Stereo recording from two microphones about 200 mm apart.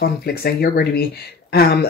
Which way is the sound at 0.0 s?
50° left (ahead or behind).